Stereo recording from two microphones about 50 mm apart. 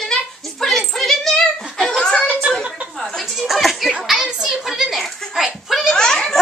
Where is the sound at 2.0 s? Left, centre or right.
Centre.